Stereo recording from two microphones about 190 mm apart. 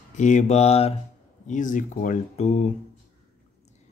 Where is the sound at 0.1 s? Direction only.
40° left (ahead or behind).